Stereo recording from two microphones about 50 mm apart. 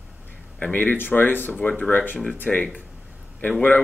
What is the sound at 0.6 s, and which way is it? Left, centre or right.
Speech, left.